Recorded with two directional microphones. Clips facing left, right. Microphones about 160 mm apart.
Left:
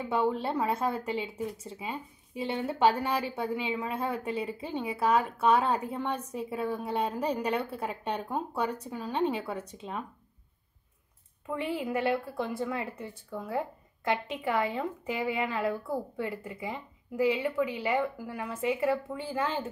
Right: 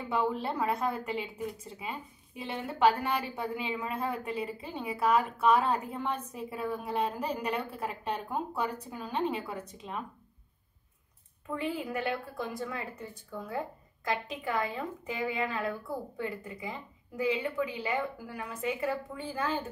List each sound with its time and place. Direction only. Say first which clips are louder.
0.1 s speech: left 2 dB; centre (ahead or behind)
11.5 s a woman's voice: left 2 dB; 25° left (ahead or behind)